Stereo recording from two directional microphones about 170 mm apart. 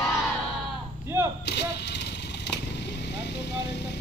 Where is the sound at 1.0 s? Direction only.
15° right (ahead or behind).